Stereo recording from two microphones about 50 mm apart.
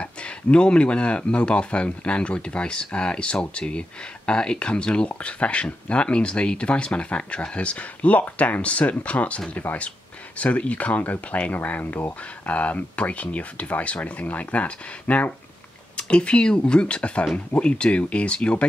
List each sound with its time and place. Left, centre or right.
0.0 s speech: left
12.4 s speech: left